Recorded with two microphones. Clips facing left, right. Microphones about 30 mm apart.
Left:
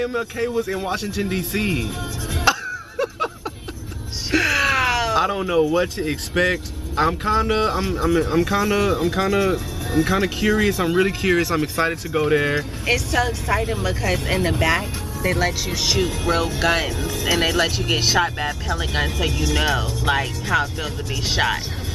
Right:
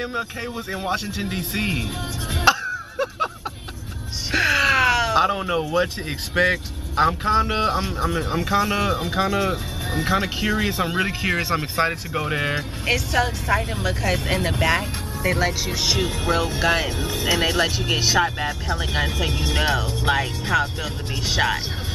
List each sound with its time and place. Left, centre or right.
0.0 s speech: centre
2.4 s a sound: centre
4.3 s speech: centre
9.8 s vehicle: right
10.1 s speech: centre
11.4 s speech: right; by 16.9 s centre
16.9 s speech: right
17.6 s speech: centre
19.3 s speech: right
20.1 s speech: centre